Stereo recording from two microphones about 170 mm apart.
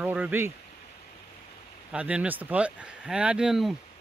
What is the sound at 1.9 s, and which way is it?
Speech, 5° right (ahead or behind).